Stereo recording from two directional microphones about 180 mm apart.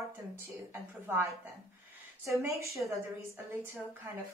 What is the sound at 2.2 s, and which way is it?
Speech, 15° right (ahead or behind).